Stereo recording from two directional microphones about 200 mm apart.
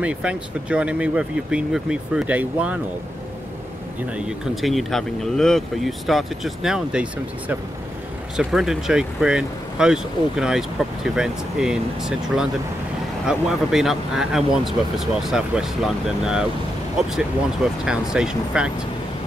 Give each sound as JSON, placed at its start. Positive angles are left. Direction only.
{"t": 0.0, "sound": "speech", "side_deg": -5}
{"t": 4.3, "sound": "speech", "side_deg": 0}
{"t": 17.8, "sound": "speech", "side_deg": -5}